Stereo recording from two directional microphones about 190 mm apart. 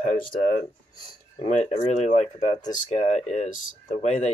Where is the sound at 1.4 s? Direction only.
35° left (ahead or behind).